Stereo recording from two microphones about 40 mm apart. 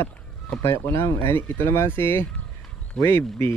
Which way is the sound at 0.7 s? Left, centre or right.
Left.